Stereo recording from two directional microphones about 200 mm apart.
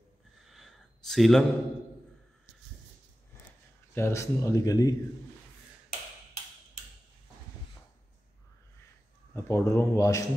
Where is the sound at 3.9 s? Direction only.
15° left (ahead or behind).